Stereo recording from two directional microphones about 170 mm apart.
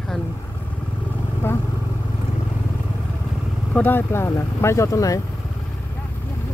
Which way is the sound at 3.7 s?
10° left (ahead or behind).